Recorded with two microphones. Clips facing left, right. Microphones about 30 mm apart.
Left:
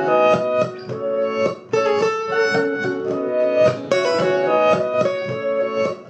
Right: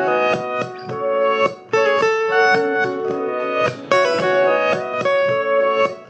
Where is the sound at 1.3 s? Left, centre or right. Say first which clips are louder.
Right 3 dB; centre.